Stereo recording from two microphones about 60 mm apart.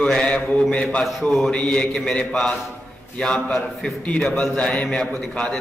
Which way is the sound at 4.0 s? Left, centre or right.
Centre.